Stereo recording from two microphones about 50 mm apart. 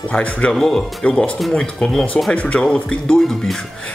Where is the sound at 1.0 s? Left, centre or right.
Left.